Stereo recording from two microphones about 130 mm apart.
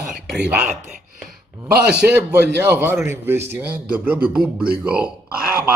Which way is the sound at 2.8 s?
20° right (ahead or behind).